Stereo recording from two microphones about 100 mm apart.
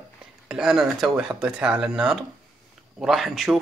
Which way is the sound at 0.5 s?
5° right (ahead or behind).